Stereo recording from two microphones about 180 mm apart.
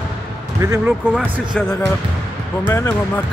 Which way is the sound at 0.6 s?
15° right (ahead or behind).